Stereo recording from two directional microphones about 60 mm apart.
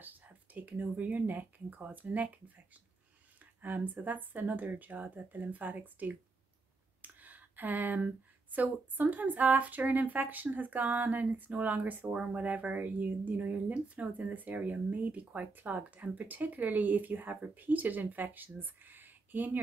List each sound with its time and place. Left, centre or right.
0.0 s speech: right
3.6 s speech: right